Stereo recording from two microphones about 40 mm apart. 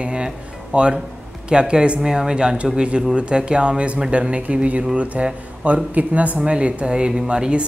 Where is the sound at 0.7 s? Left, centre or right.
Right.